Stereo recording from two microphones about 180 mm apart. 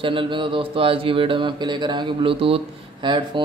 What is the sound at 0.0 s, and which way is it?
Speech, 30° right (ahead or behind).